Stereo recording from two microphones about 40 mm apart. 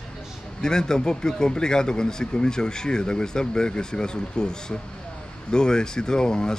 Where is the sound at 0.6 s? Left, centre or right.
Centre.